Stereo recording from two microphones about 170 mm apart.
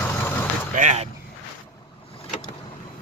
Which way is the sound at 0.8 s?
45° right (ahead or behind).